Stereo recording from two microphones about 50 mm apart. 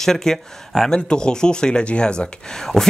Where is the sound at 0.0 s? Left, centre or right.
Centre.